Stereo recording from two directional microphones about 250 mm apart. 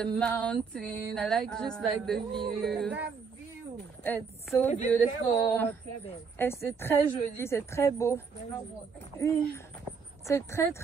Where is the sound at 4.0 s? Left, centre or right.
Centre.